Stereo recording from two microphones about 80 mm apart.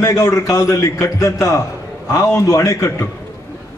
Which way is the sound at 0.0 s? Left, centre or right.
Left.